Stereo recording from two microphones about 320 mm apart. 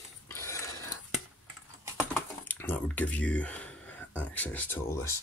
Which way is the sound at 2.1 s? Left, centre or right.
Centre.